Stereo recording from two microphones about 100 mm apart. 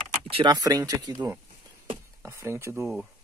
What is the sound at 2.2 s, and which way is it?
Speech, 25° right (ahead or behind).